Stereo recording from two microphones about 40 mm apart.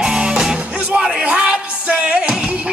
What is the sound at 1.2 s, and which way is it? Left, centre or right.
Music, right.